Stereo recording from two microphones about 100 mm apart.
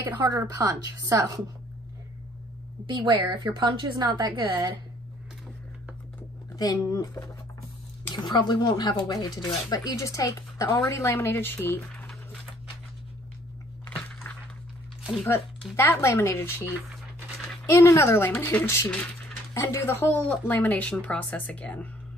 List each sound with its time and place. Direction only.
0.3 s a woman's voice: 35° right (ahead or behind)
2.9 s a woman's voice: 50° right (ahead or behind)
6.5 s speech: 40° left (ahead or behind)
8.3 s speech: 45° left (ahead or behind); by 12.1 s 20° left (ahead or behind)
13.8 s crushing: 15° left (ahead or behind)
15.7 s speech: 25° left (ahead or behind)